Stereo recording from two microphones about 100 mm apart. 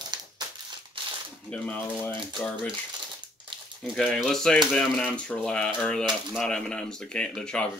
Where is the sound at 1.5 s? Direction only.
15° left (ahead or behind).